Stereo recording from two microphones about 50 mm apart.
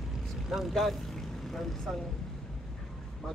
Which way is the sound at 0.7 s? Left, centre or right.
Centre.